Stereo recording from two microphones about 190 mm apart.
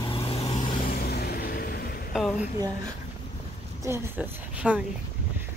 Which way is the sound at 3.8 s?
10° right (ahead or behind).